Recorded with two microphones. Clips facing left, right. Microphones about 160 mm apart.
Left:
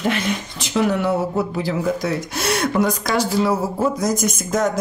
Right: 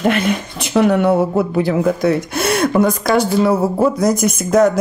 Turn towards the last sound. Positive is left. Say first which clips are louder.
# right 7 dB
turn(degrees=-65)  # may be behind; listen again after turning